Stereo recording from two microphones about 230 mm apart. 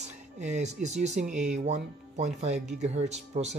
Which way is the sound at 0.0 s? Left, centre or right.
Right.